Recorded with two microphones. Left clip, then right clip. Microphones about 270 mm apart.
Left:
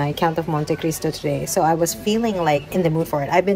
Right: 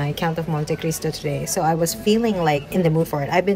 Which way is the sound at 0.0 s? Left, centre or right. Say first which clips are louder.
Left 4 dB; centre.